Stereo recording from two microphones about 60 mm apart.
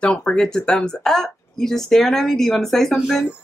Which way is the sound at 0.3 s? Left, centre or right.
Centre.